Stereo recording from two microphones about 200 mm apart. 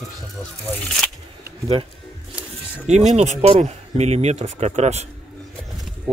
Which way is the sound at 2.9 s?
35° right (ahead or behind).